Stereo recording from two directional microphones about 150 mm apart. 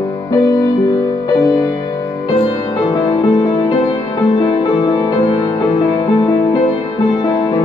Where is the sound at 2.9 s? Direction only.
30° left (ahead or behind).